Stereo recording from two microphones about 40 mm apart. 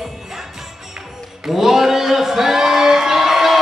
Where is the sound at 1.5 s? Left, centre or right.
Centre.